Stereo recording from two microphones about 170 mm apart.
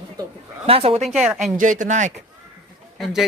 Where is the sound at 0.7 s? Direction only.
35° right (ahead or behind).